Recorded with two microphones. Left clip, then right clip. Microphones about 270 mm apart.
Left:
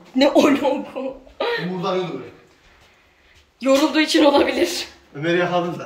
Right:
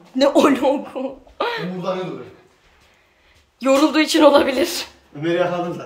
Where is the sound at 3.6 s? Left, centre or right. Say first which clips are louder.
Right 1 dB; centre.